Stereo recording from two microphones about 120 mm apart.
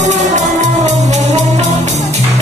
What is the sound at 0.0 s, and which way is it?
Music, 85° right.